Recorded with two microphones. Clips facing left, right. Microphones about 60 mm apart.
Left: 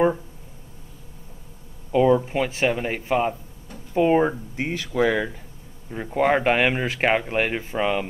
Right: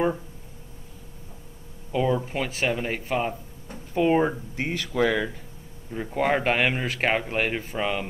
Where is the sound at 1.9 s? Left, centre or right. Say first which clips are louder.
Left 6 dB; centre.